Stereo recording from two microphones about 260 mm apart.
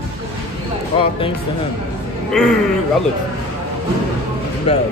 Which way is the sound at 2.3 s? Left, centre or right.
Centre.